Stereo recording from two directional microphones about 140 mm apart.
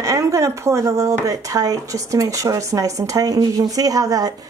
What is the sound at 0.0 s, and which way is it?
Speech, 20° right (ahead or behind).